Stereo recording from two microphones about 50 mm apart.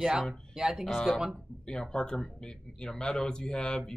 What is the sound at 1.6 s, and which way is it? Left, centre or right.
Speech, centre.